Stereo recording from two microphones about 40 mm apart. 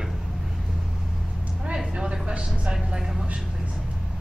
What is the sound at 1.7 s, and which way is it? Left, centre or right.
Vehicle, centre.